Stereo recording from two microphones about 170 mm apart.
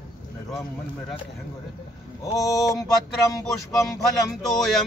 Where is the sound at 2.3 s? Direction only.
20° left (ahead or behind).